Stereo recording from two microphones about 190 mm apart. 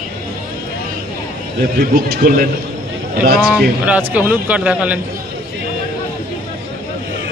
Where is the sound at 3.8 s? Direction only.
5° right (ahead or behind).